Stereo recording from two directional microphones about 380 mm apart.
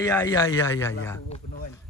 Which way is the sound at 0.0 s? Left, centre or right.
Centre.